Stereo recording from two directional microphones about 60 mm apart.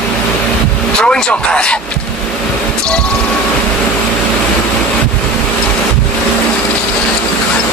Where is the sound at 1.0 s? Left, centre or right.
Centre.